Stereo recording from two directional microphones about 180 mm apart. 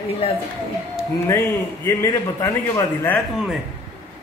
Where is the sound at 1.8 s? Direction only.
15° left (ahead or behind).